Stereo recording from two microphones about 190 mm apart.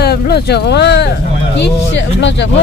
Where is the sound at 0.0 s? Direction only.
55° left (ahead or behind).